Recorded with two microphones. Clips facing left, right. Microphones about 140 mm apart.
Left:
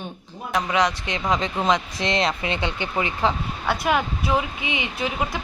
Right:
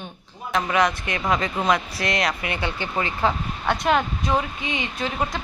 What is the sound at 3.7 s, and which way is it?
Speech, 5° left (ahead or behind).